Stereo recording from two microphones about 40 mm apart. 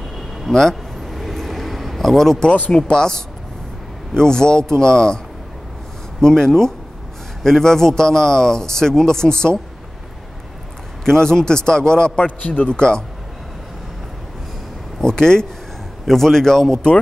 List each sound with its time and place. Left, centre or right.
0.5 s a sound: centre
2.7 s speech: centre
6.2 s speech: centre
11.1 s speech: centre
12.3 s a man's voice: left
12.7 s speech: left
15.0 s speech: centre